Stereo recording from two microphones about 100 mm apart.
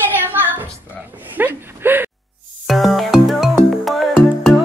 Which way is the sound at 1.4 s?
20° right (ahead or behind).